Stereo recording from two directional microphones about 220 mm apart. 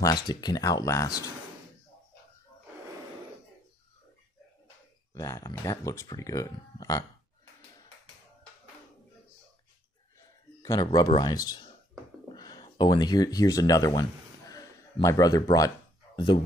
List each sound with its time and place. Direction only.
0.0 s speech: 15° left (ahead or behind)
5.1 s speech: 15° left (ahead or behind)
10.6 s speech: 15° left (ahead or behind)
14.5 s a sound: 15° left (ahead or behind)